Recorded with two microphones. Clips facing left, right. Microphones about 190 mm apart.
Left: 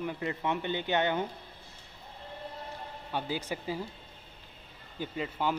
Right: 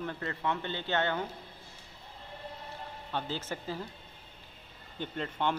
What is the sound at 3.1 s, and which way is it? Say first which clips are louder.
Speech: left 2 dB; 10° left (ahead or behind).